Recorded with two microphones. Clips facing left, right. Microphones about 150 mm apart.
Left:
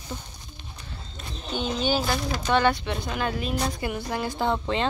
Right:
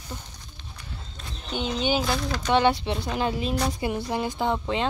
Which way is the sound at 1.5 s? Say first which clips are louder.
Even; 15° right (ahead or behind).